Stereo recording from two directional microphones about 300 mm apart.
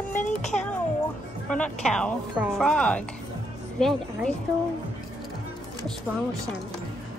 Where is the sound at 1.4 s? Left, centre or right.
Centre.